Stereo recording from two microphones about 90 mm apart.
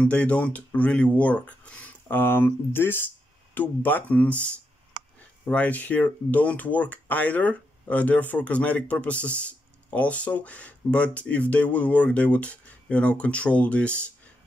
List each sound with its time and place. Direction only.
0.0 s speech: 15° left (ahead or behind)